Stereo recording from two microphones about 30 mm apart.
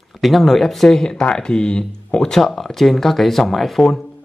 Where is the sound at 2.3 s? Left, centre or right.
Centre.